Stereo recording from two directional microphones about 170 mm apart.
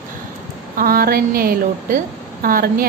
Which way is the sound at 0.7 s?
60° right (ahead or behind).